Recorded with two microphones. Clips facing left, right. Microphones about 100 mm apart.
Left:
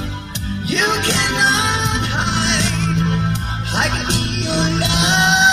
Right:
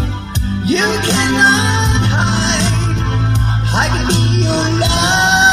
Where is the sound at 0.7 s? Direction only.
30° right (ahead or behind).